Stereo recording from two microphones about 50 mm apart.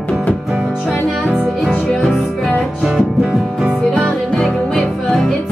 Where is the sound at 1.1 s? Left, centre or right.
Centre.